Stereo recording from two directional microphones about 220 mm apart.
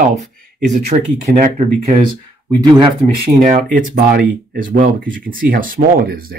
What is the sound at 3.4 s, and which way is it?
Speech, 35° right (ahead or behind).